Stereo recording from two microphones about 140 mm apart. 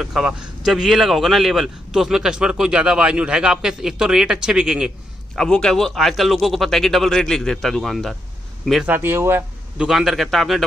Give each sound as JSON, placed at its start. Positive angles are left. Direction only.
{"t": 0.0, "sound": "a man's voice", "side_deg": -5}
{"t": 8.8, "sound": "speech", "side_deg": -15}
{"t": 9.8, "sound": "a man's voice", "side_deg": 0}